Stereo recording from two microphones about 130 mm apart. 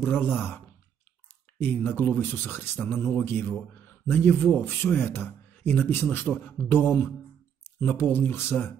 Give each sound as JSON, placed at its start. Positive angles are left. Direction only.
{"t": 0.0, "sound": "speech", "side_deg": 15}
{"t": 1.6, "sound": "speech", "side_deg": 15}